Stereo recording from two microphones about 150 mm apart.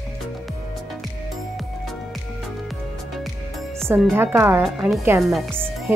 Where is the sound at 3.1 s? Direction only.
Centre (ahead or behind).